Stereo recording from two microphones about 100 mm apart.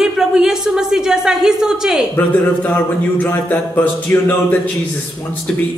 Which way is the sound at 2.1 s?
15° left (ahead or behind).